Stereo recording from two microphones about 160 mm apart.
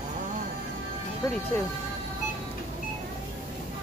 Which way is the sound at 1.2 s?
20° left (ahead or behind).